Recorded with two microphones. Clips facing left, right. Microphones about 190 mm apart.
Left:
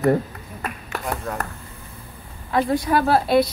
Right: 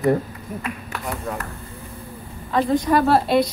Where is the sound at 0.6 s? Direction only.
45° left (ahead or behind).